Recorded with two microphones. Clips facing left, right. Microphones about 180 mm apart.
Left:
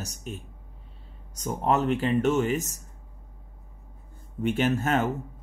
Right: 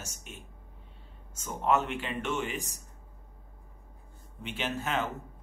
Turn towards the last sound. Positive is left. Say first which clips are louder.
# left 8 dB
turn(degrees=45)  # may be behind; listen again after turning